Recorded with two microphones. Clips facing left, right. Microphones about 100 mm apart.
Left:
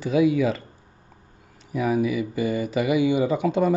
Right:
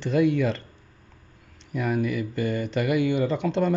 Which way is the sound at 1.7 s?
5° left (ahead or behind).